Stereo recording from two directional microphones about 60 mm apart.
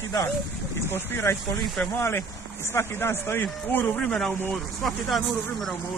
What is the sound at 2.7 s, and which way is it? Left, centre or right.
Speech, left.